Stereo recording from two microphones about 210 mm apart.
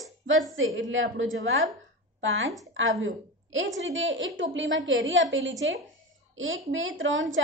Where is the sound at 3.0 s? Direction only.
65° right (ahead or behind).